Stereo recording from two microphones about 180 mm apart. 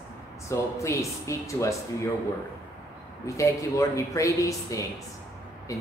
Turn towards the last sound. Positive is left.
turn(degrees=20)  # may be behind; listen again after turning